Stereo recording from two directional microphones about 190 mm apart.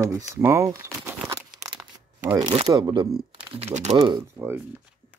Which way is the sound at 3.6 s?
35° right (ahead or behind).